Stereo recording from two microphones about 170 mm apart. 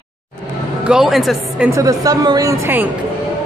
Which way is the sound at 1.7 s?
20° right (ahead or behind).